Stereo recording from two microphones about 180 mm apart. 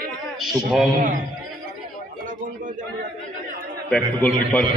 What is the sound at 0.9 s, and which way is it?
Speech, 50° right (ahead or behind).